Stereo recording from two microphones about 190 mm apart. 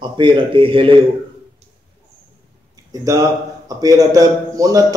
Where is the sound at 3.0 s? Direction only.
15° right (ahead or behind).